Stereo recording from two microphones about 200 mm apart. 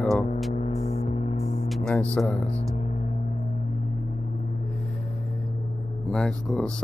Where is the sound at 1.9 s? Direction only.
5° left (ahead or behind).